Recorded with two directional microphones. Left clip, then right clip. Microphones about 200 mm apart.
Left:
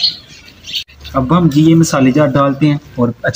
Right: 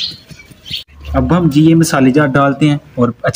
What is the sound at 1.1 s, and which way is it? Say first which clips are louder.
Speech: even; 30° right (ahead or behind).